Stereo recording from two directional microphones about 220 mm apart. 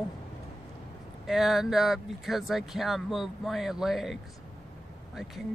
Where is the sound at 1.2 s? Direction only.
Centre (ahead or behind).